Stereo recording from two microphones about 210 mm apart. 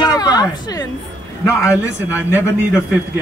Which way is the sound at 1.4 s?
15° left (ahead or behind).